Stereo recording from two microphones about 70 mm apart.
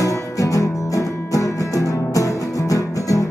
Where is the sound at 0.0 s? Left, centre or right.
Left.